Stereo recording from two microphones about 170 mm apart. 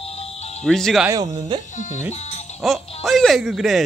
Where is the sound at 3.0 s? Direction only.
Centre (ahead or behind).